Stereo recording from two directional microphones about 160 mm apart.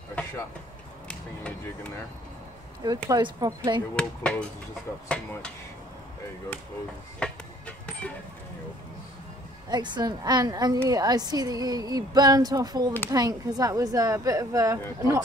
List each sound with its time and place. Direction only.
0.1 s vehicle: 10° left (ahead or behind)
1.0 s speech: 5° left (ahead or behind)
3.1 s a woman's voice: 25° right (ahead or behind)
3.9 s speech: 5° left (ahead or behind)
7.2 s music: 5° left (ahead or behind)
9.7 s a woman's voice: 25° right (ahead or behind)